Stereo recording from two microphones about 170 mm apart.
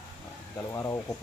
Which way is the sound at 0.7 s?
15° left (ahead or behind).